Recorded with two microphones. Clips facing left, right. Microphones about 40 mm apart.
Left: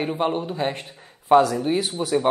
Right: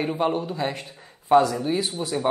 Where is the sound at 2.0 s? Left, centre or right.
Centre.